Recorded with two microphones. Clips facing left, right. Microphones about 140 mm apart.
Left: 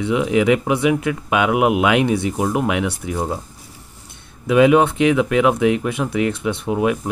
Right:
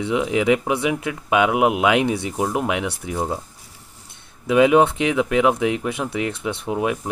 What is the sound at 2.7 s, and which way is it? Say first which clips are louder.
Speech: left 3 dB; 25° right (ahead or behind).